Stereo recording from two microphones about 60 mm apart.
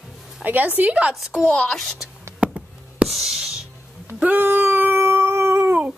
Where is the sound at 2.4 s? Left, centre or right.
Centre.